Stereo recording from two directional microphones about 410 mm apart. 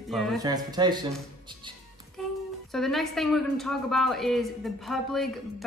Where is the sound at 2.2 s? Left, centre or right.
Centre.